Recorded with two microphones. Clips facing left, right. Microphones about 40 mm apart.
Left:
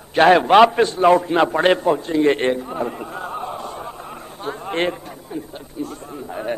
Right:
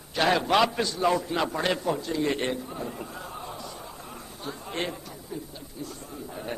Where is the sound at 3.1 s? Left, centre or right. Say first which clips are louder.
Left 10 dB; left.